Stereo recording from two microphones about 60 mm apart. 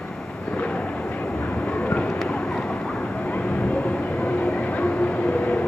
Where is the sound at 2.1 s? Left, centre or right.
Centre.